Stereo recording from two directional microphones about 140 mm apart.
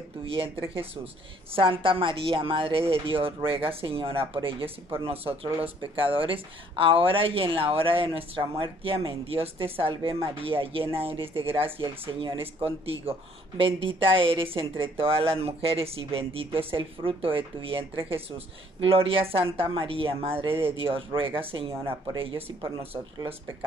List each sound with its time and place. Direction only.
0.3 s speech: 40° right (ahead or behind)